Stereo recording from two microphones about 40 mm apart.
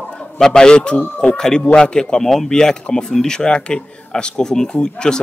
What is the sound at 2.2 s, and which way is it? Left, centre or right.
Speech, centre.